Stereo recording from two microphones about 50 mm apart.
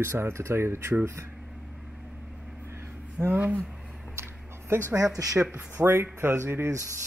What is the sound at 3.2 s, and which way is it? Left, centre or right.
Speech, right.